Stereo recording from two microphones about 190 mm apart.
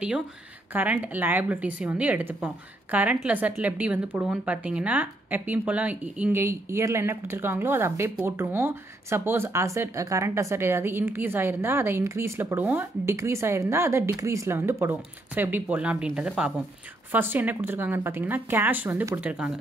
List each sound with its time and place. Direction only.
0.7 s speech: 10° right (ahead or behind)